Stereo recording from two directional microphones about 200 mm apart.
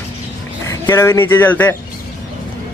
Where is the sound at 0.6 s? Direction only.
15° left (ahead or behind).